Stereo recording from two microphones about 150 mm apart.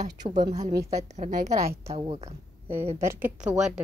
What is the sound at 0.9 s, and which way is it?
Speech, 50° right (ahead or behind).